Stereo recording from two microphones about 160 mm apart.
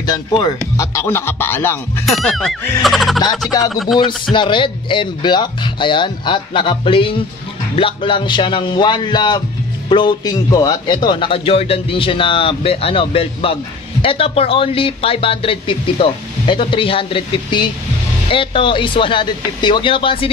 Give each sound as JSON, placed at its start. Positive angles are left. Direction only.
{"t": 0.0, "sound": "speech", "side_deg": 25}
{"t": 2.0, "sound": "speech", "side_deg": 0}
{"t": 4.0, "sound": "a man's voice", "side_deg": 30}